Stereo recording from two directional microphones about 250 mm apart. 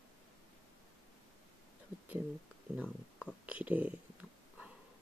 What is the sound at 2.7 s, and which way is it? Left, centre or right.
Speech, centre.